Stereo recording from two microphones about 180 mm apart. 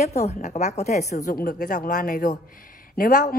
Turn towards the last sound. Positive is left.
turn(degrees=50)  # may be behind; listen again after turning